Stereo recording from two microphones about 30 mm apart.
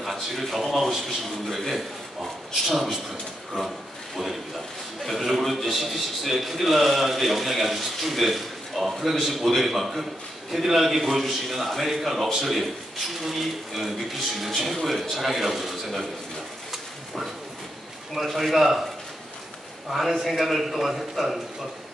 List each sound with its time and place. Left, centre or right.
0.0 s a sound: centre
0.6 s a man's voice: centre
3.6 s a sound: left
5.0 s a man's voice: centre
12.1 s speech: centre
12.4 s a man's voice: centre
16.7 s a sound: centre
18.1 s speech: centre
19.9 s a man's voice: centre